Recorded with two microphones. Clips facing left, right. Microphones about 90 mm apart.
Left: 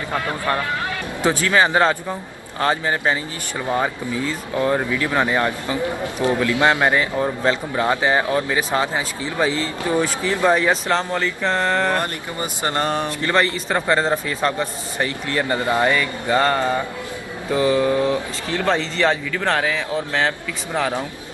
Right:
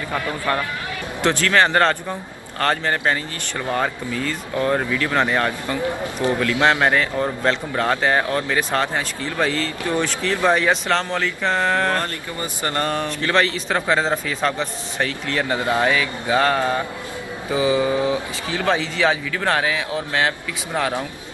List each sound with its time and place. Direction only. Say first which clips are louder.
1.2 s a man's voice: even; 10° left (ahead or behind)
11.9 s speech: left 1 dB; 20° left (ahead or behind)
13.3 s a man's voice: even; 5° left (ahead or behind)